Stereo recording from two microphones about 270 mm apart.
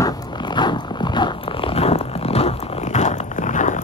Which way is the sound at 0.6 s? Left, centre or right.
Centre.